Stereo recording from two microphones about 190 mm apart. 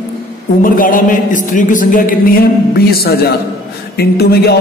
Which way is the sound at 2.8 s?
55° left (ahead or behind).